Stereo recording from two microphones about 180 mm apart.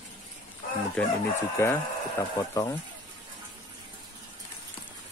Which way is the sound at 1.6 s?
15° left (ahead or behind).